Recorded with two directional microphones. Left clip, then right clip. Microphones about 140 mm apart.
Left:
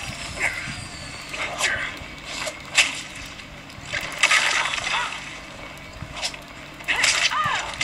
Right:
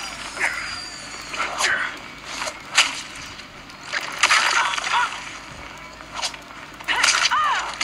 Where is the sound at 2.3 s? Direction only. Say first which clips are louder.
Right 1 dB; 5° left (ahead or behind).